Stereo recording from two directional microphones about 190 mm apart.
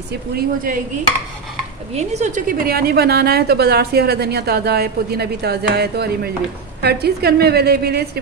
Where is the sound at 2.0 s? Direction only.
35° right (ahead or behind).